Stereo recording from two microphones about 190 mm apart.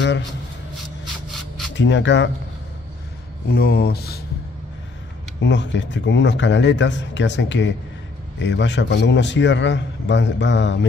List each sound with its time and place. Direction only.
1.8 s a man's voice: 70° left (ahead or behind)
3.4 s speech: 55° left (ahead or behind)
5.4 s a man's voice: 70° left (ahead or behind)